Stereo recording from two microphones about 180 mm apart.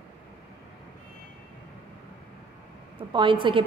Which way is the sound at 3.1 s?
25° right (ahead or behind).